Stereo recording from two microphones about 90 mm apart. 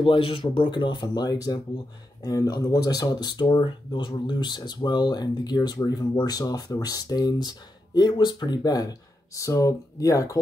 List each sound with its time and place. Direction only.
0.0 s speech: 75° left (ahead or behind); by 10.4 s 40° left (ahead or behind)